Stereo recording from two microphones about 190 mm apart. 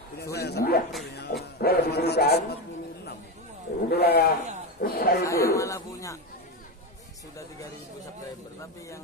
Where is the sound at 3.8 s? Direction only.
55° left (ahead or behind).